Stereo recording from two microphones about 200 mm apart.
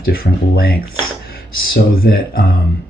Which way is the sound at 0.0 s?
50° left (ahead or behind).